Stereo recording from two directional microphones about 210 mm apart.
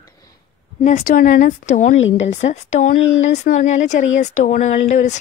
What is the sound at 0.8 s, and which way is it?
A woman's voice, 40° left (ahead or behind).